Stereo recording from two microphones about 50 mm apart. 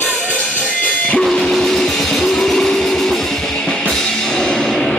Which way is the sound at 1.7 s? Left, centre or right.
Centre.